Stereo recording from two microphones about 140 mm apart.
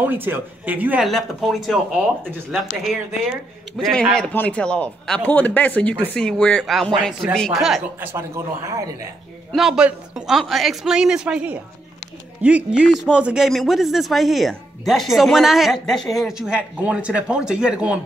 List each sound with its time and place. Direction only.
0.0 s speech: 15° right (ahead or behind)
1.0 s a man's voice: centre (ahead or behind)
8.0 s speech: 20° right (ahead or behind)
9.5 s a man's voice: centre (ahead or behind)